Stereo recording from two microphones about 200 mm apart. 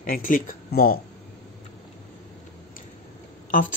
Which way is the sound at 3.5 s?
40° left (ahead or behind).